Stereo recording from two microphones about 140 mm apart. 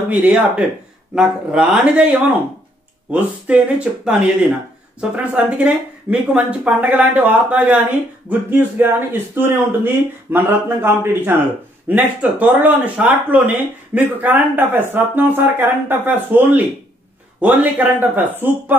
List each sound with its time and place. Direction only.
0.1 s speech: 10° right (ahead or behind)